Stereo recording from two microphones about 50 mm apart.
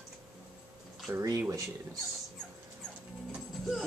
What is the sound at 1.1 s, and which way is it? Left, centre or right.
Speech, right.